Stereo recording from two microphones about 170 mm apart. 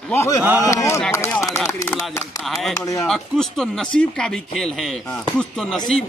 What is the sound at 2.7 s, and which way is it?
Speech, 20° left (ahead or behind).